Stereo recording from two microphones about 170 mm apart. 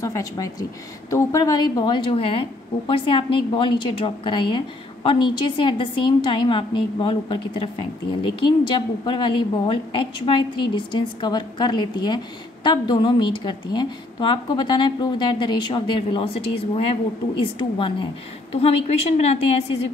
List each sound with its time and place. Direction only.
0.0 s a woman's voice: 20° left (ahead or behind); by 19.6 s 40° left (ahead or behind)